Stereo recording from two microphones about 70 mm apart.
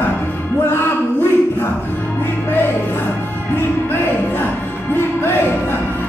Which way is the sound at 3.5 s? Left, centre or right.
Left.